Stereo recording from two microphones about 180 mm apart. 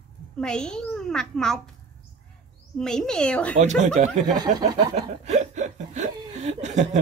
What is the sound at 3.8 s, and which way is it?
Speech, 40° right (ahead or behind).